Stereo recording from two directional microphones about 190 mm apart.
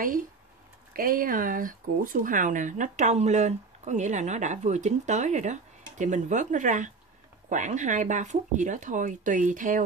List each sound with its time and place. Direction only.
0.0 s speech: 45° right (ahead or behind)